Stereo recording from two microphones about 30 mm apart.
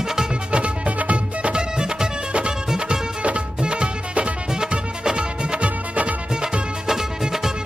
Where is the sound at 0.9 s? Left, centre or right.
Right.